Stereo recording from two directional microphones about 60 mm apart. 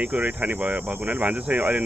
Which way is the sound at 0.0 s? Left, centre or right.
Right.